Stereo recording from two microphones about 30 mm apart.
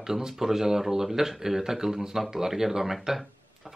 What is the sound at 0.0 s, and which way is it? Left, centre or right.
Speech, centre.